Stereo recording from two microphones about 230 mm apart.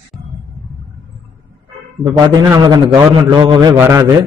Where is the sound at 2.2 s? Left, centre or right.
Centre.